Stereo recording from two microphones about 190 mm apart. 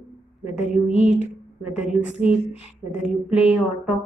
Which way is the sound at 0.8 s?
35° left (ahead or behind).